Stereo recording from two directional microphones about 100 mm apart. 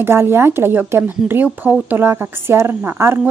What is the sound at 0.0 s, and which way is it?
A woman's voice, 25° right (ahead or behind).